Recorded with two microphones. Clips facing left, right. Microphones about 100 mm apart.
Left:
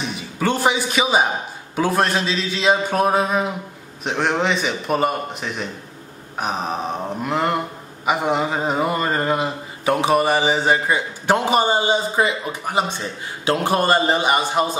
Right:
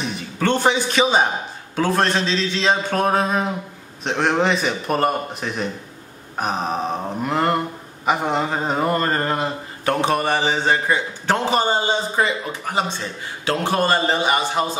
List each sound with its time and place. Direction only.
0.0 s a man's voice: 5° left (ahead or behind)
13.5 s speech: 15° left (ahead or behind)